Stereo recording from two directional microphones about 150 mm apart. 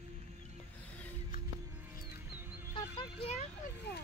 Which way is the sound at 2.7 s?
40° left (ahead or behind).